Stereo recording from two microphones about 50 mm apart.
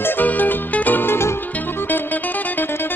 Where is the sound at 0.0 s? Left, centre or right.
Left.